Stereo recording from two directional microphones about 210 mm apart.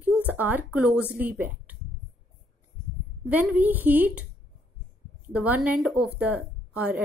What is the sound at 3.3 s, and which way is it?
A woman's voice, 10° right (ahead or behind).